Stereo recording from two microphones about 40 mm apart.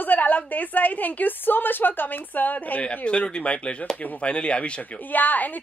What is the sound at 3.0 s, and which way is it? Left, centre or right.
Speech, left.